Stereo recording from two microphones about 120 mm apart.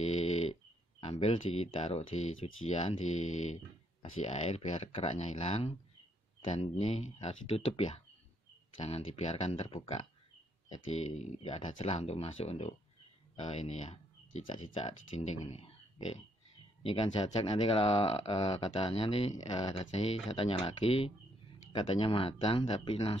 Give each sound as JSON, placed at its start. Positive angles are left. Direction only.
{"t": 0.0, "sound": "snoring", "side_deg": 65}
{"t": 1.0, "sound": "speech", "side_deg": 55}
{"t": 4.8, "sound": "speech", "side_deg": 50}
{"t": 5.1, "sound": "speech", "side_deg": 75}
{"t": 10.9, "sound": "speech", "side_deg": 65}
{"t": 13.4, "sound": "speech", "side_deg": 70}
{"t": 14.4, "sound": "speech", "side_deg": 45}
{"t": 14.9, "sound": "speech", "side_deg": 70}